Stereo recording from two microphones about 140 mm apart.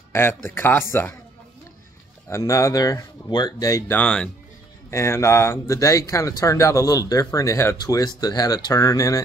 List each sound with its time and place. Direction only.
0.1 s speech: 20° left (ahead or behind)
2.2 s speech: 20° left (ahead or behind)
3.9 s speech: 10° left (ahead or behind)
4.9 s speech: 20° left (ahead or behind)